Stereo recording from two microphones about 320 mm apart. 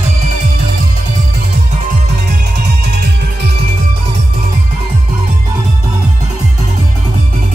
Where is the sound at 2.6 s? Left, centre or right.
Right.